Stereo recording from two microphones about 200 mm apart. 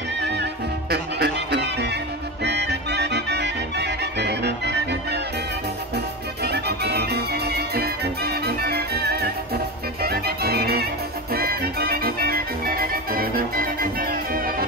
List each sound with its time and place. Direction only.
0.2 s music: 60° right (ahead or behind)
6.4 s music: 55° right (ahead or behind)